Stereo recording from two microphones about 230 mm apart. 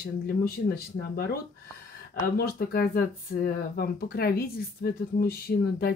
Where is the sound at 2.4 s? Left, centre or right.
Left.